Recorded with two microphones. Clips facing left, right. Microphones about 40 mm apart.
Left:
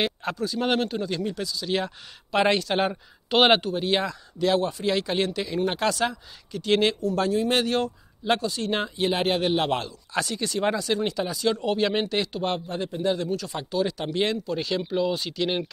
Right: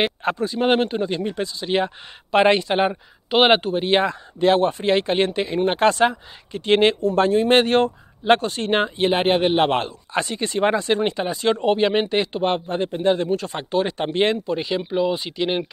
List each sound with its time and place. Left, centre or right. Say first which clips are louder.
0.0 s speech: right 5 dB; right; by 3.6 s centre
3.6 s speech: right 6 dB; right